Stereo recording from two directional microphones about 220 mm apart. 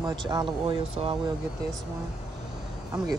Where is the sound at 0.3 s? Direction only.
20° right (ahead or behind).